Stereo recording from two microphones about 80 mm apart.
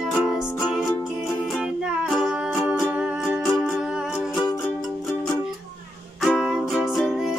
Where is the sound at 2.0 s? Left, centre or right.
Centre.